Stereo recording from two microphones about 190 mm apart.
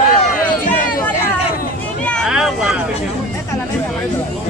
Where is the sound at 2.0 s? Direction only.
Centre (ahead or behind).